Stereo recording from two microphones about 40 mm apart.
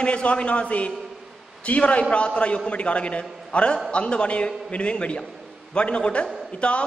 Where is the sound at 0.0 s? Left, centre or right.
Left.